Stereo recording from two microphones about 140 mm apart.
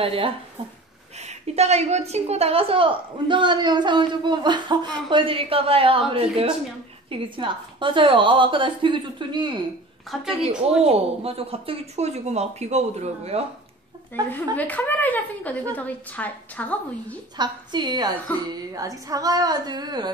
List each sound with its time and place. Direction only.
0.0 s a woman's voice: 40° right (ahead or behind)
1.2 s a woman's voice: 50° right (ahead or behind); by 9.5 s 35° right (ahead or behind)
10.8 s speech: 45° right (ahead or behind)
14.3 s a woman's voice: 10° left (ahead or behind)
17.4 s a woman's voice: 30° right (ahead or behind)